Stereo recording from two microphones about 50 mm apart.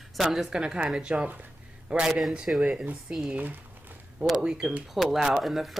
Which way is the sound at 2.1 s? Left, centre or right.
Centre.